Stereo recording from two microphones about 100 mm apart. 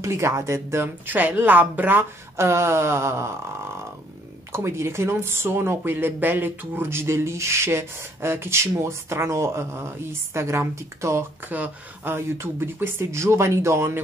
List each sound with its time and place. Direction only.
0.0 s speech: 30° right (ahead or behind)
4.5 s speech: 25° right (ahead or behind)